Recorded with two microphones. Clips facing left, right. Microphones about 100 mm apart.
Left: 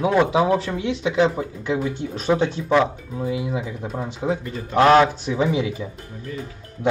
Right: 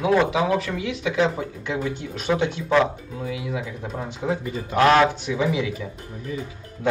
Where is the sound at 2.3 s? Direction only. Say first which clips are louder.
Left 2 dB; 35° left (ahead or behind).